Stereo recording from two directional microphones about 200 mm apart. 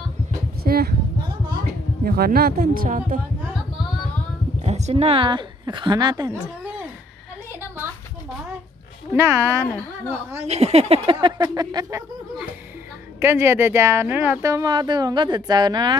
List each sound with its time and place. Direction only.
0.7 s speech: 50° right (ahead or behind)
2.0 s speech: 50° right (ahead or behind)
4.6 s a woman's voice: 35° right (ahead or behind)
9.1 s speech: 15° right (ahead or behind)
10.4 s speech: 30° right (ahead or behind)
13.2 s speech: 10° right (ahead or behind)